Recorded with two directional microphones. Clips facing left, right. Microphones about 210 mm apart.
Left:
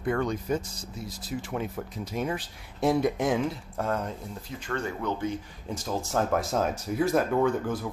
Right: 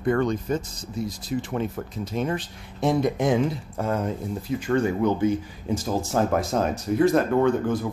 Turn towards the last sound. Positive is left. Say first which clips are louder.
# right 4 dB
turn(degrees=5)  # may be behind; listen again after turning